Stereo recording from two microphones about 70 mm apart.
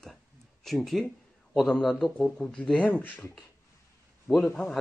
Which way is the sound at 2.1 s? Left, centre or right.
Centre.